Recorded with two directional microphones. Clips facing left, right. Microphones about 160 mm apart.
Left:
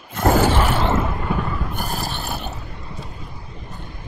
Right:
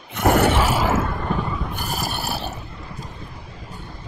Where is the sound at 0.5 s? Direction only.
5° right (ahead or behind).